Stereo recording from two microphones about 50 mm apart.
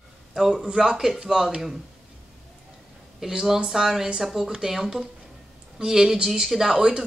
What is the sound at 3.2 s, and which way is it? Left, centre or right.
Speech, centre.